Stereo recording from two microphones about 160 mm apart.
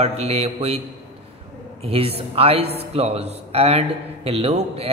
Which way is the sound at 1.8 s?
40° right (ahead or behind).